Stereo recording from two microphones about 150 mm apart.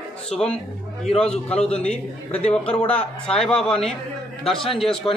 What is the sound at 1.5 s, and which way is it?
Speech, 40° left (ahead or behind).